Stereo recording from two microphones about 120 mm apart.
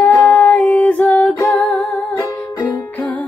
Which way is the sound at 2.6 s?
15° left (ahead or behind).